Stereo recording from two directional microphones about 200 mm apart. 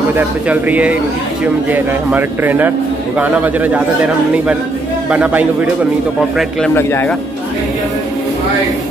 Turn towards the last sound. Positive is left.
turn(degrees=10)  # may be behind; listen again after turning